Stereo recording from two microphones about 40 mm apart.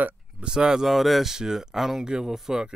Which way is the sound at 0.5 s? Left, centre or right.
Centre.